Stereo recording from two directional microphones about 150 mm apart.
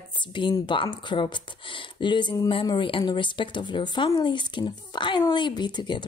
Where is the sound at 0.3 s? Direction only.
30° left (ahead or behind).